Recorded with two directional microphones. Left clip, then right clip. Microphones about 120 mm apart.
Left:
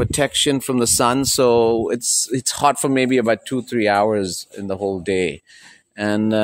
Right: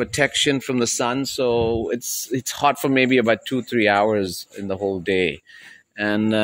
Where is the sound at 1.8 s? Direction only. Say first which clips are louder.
Left 5 dB; 25° left (ahead or behind).